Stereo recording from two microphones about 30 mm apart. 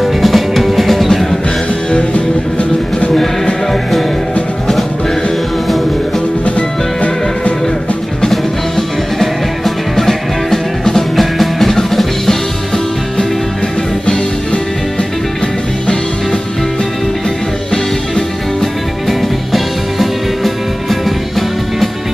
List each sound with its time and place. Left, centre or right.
0.0 s music: centre
1.9 s music: left
8.3 s music: centre
11.1 s music: centre
19.0 s music: centre